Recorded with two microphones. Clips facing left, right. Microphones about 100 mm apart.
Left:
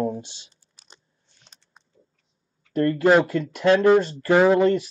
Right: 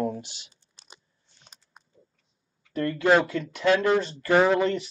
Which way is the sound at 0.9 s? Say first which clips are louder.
Right 1 dB; 5° right (ahead or behind).